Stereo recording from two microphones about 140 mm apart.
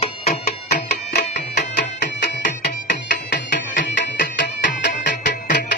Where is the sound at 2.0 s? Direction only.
80° left.